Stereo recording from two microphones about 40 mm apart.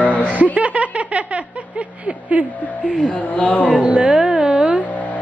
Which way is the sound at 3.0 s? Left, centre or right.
Left.